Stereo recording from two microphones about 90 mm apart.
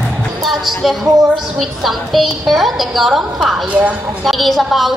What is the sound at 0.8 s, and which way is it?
A woman's voice, centre (ahead or behind).